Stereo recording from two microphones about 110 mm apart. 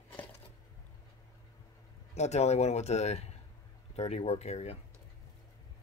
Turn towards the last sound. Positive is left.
turn(degrees=80)